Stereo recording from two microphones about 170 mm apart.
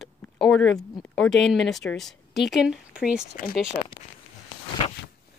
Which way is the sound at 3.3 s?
60° left (ahead or behind).